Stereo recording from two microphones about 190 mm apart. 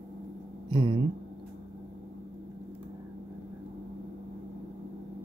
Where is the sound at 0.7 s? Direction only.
25° right (ahead or behind).